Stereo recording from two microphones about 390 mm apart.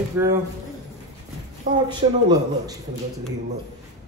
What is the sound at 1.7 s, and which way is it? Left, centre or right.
Speech, centre.